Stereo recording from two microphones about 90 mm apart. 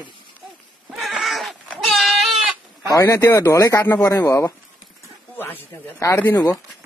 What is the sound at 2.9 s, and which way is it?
Speech, 35° left (ahead or behind).